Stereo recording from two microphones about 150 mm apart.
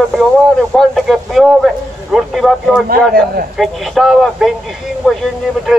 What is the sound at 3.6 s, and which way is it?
Speech, centre (ahead or behind).